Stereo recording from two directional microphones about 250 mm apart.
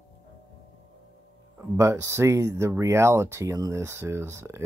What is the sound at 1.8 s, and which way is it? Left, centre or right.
Speech, centre.